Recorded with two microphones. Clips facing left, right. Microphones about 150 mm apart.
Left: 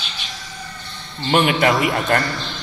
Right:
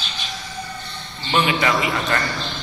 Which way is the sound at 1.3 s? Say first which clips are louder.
Left 4 dB; 50° left (ahead or behind).